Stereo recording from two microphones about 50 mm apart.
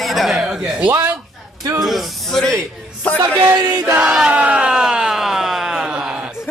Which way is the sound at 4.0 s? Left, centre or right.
Centre.